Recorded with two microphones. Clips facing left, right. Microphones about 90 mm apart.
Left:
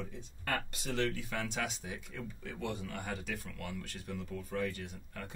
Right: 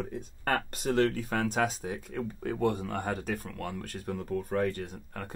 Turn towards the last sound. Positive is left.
turn(degrees=-50)  # may be behind; listen again after turning